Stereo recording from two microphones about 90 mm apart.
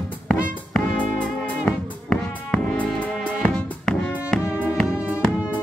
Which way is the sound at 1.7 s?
10° left (ahead or behind).